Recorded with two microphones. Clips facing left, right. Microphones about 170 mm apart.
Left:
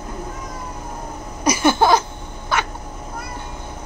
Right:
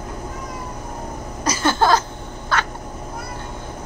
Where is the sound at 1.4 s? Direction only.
15° left (ahead or behind).